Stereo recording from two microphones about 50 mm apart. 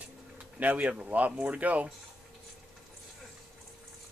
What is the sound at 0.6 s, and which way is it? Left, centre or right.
Speech, right.